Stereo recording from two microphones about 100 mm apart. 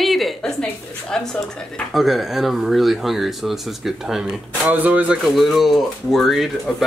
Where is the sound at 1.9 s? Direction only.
Centre (ahead or behind).